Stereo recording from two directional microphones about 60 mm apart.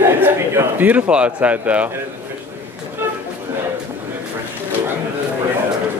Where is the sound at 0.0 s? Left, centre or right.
Right.